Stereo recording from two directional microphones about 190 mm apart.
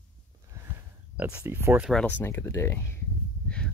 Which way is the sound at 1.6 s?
5° right (ahead or behind).